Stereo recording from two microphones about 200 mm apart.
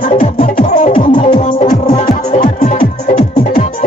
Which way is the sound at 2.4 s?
45° left (ahead or behind).